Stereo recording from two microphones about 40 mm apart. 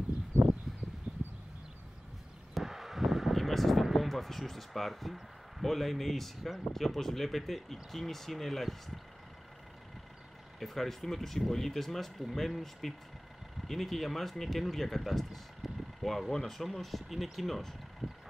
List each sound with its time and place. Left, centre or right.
1.1 s a sound: right
2.5 s vehicle: centre
3.9 s speech: centre
10.6 s speech: centre
18.0 s vehicle: centre